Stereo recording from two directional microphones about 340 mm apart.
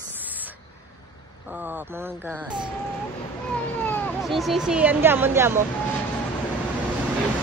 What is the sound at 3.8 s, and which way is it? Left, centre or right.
Speech, centre.